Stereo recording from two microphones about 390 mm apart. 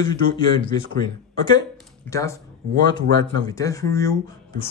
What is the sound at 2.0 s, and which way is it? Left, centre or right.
Speech, centre.